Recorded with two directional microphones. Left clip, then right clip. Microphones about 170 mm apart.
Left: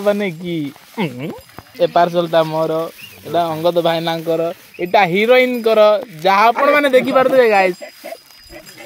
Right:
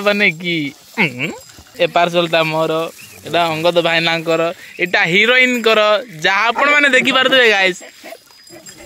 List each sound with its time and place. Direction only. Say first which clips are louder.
0.0 s speech: right 3 dB; 10° left (ahead or behind)
2.0 s speech: even; 20° right (ahead or behind)
3.8 s speech: right 2 dB; 10° left (ahead or behind)
7.2 s speech: left 2 dB; 5° right (ahead or behind)